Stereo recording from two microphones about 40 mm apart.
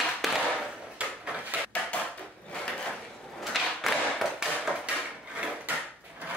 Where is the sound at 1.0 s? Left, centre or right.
Right.